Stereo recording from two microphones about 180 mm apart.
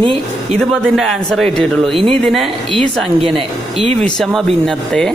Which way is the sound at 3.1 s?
30° right (ahead or behind).